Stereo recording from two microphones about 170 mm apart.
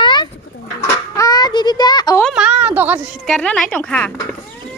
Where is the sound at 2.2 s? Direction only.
5° right (ahead or behind).